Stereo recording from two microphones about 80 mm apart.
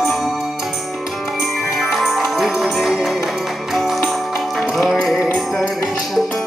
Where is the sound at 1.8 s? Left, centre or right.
Centre.